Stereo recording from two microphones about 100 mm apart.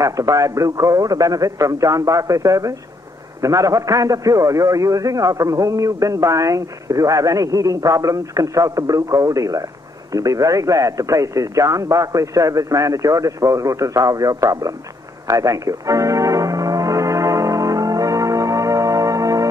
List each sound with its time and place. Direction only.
0.0 s a man's voice: 35° right (ahead or behind)
15.2 s music: 35° right (ahead or behind)